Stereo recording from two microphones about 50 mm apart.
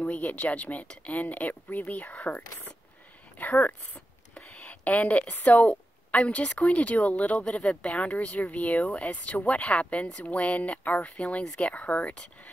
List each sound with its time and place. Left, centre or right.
0.0 s speech: left